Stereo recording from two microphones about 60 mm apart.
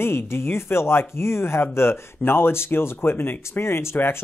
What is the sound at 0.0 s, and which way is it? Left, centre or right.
Speech, left.